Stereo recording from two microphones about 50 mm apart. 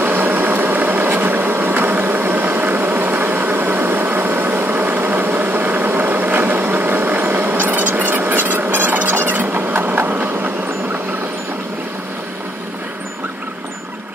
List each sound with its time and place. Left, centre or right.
0.0 s vehicle: right